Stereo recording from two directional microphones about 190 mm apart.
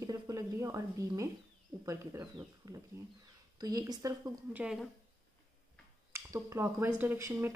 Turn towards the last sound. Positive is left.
turn(degrees=-10)  # may be behind; listen again after turning